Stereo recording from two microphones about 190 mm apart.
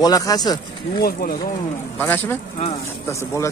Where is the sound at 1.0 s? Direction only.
50° left (ahead or behind).